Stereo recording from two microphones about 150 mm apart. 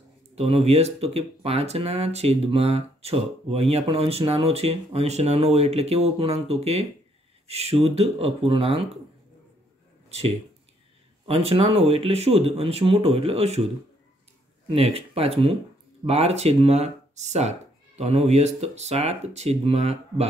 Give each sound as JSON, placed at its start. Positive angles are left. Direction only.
{"t": 0.4, "sound": "speech", "side_deg": -45}
{"t": 10.0, "sound": "a sound", "side_deg": -45}
{"t": 11.2, "sound": "speech", "side_deg": -40}
{"t": 14.7, "sound": "speech", "side_deg": -40}